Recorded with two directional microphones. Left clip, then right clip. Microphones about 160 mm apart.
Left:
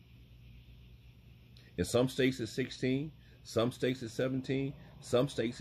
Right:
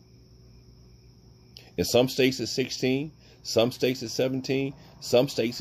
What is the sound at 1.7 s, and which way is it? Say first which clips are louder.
Speech: right 8 dB; 20° right (ahead or behind).